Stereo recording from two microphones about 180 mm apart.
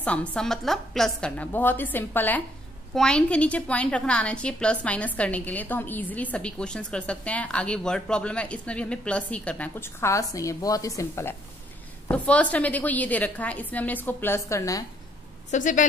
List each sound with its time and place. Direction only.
0.0 s a woman's voice: 5° left (ahead or behind)
15.5 s a woman's voice: 45° left (ahead or behind)